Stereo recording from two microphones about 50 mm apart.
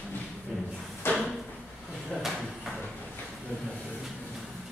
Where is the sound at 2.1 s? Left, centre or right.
Centre.